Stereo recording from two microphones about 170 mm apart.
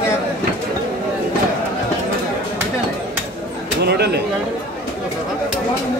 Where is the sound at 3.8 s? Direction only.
75° right (ahead or behind).